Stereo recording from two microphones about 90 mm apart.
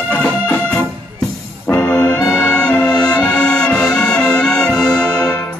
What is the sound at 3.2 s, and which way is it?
Brass instrument, 15° left (ahead or behind).